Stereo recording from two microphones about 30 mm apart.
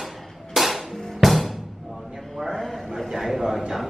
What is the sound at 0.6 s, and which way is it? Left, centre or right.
Music, centre.